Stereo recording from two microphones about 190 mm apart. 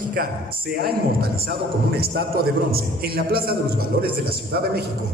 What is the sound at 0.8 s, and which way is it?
A man's voice, 55° right (ahead or behind).